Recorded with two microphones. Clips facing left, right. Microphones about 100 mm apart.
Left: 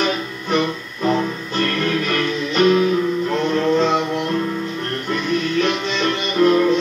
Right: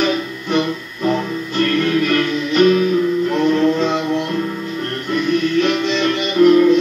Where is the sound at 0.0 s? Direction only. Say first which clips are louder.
Right 3 dB; 40° left (ahead or behind).